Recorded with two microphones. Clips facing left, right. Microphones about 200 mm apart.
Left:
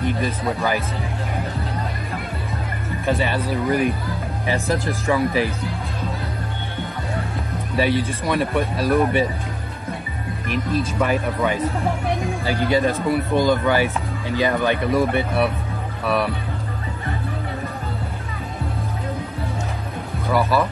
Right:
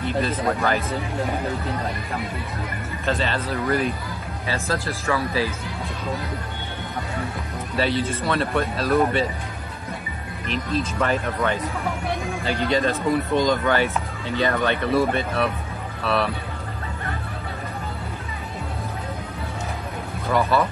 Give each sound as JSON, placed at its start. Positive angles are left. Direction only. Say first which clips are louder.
{"t": 0.0, "sound": "speech", "louder": "even", "side_deg": 15}
{"t": 3.1, "sound": "speech", "louder": "left 3 dB", "side_deg": 15}
{"t": 7.7, "sound": "speech", "louder": "left 2 dB", "side_deg": 15}
{"t": 11.0, "sound": "speech", "louder": "left 2 dB", "side_deg": 10}
{"t": 20.3, "sound": "speech", "louder": "left 1 dB", "side_deg": 15}